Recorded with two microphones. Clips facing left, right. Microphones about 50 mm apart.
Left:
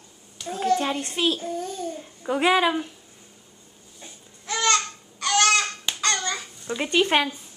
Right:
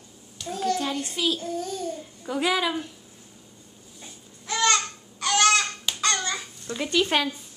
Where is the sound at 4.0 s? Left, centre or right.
Centre.